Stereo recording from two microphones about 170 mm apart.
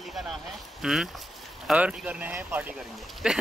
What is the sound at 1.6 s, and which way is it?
Speech, 5° right (ahead or behind).